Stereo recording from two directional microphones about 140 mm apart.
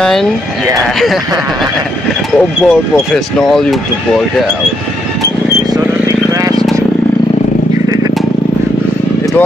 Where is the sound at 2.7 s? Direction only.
Centre (ahead or behind).